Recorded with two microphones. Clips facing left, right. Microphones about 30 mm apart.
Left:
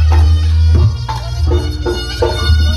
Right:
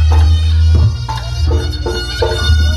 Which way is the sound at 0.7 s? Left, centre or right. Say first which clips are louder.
Left 1 dB; left.